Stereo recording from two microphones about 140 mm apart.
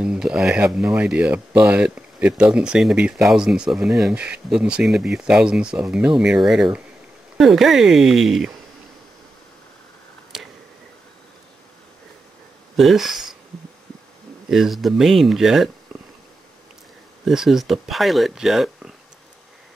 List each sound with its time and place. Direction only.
0.0 s speech: 5° right (ahead or behind)
12.7 s speech: centre (ahead or behind)
14.5 s speech: centre (ahead or behind)
17.2 s speech: centre (ahead or behind)